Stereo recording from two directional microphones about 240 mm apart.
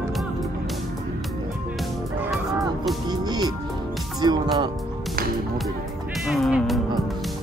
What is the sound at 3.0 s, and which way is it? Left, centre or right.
Speech, centre.